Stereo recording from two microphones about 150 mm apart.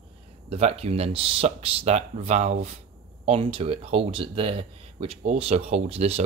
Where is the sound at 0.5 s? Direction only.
45° right (ahead or behind).